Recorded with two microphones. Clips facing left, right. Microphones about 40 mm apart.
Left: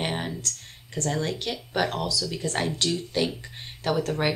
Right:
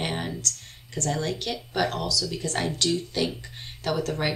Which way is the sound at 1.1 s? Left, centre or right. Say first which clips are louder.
Even; centre.